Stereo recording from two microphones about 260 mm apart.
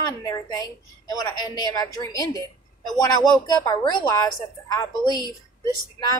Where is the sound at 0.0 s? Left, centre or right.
Centre.